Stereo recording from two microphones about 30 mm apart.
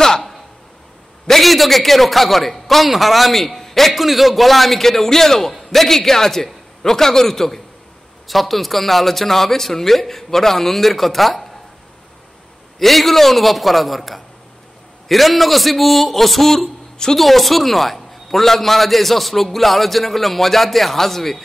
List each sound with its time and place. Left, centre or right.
0.0 s a sound: centre
1.4 s a man's voice: centre
12.7 s a man's voice: centre